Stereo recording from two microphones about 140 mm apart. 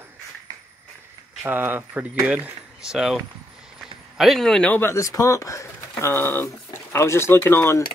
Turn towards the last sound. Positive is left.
turn(degrees=15)  # may be behind; listen again after turning